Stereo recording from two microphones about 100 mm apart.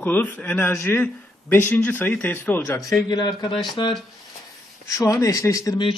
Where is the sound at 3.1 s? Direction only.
45° left (ahead or behind).